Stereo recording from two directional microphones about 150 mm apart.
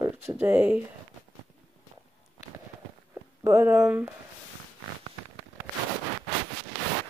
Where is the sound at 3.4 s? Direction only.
20° right (ahead or behind).